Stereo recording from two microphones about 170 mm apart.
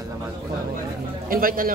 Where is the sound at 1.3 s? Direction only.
55° right (ahead or behind).